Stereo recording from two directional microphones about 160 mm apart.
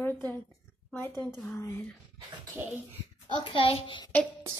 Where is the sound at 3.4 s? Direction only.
35° left (ahead or behind).